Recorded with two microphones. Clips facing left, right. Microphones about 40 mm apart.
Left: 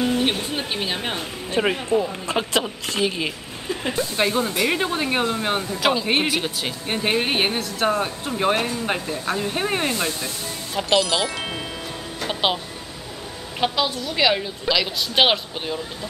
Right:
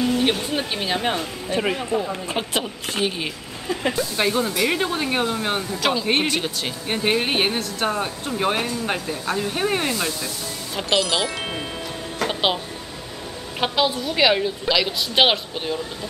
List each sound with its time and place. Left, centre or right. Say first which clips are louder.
0.2 s speech: right 2 dB; centre
1.5 s speech: left 1 dB; left
2.3 s a woman's voice: left 5 dB; left
4.2 s speech: even; centre
10.8 s speech: left 1 dB; centre
12.3 s music: even; centre
13.6 s a woman's voice: right 1 dB; centre